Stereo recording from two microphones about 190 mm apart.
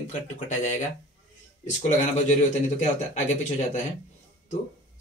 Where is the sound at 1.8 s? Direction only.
40° left (ahead or behind).